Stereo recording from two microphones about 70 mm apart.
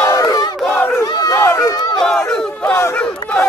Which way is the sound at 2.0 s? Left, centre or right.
Centre.